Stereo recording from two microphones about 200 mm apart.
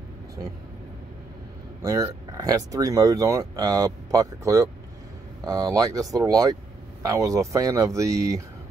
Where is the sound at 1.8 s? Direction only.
15° right (ahead or behind).